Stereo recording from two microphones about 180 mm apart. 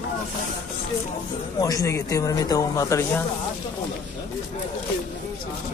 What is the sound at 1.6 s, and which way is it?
Speech, 20° left (ahead or behind).